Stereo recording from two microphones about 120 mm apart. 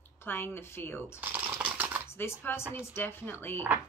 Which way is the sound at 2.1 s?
20° left (ahead or behind).